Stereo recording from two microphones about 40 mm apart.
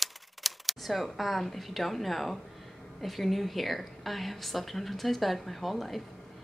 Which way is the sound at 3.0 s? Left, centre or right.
Centre.